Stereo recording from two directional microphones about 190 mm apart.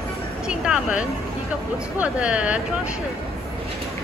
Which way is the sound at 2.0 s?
5° right (ahead or behind).